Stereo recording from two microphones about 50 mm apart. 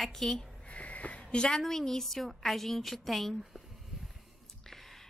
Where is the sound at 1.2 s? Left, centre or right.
Centre.